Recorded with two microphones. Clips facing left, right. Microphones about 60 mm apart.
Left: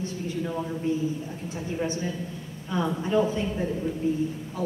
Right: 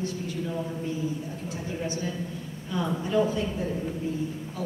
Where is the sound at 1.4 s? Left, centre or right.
Left.